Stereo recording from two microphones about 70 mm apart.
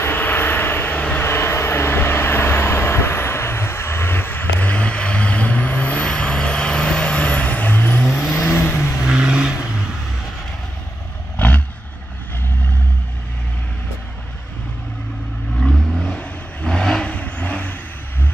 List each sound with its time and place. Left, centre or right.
0.0 s vehicle: left
1.2 s vehicle: left
8.4 s vehicle: left
9.0 s vehicle: centre
11.3 s vehicle: left
15.6 s vehicle: centre